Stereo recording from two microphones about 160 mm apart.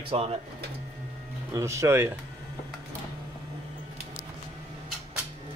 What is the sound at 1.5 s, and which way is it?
Speech, 20° right (ahead or behind).